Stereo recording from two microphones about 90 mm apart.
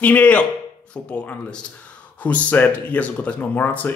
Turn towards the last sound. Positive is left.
turn(degrees=20)  # may be behind; listen again after turning